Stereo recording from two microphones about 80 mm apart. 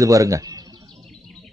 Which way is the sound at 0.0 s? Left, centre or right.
Right.